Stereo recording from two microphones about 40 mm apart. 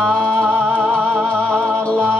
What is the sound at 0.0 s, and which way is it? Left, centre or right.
Music, left.